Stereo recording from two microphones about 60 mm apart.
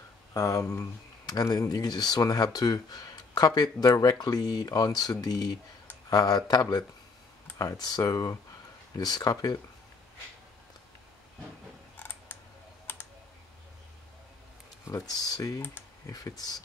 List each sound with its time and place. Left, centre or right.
0.3 s speech: left
1.2 s speech: left
12.0 s scissors: left
12.9 s computer keyboard: left
14.9 s speech: left